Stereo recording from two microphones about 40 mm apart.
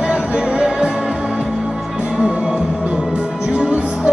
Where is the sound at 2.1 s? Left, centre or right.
Right.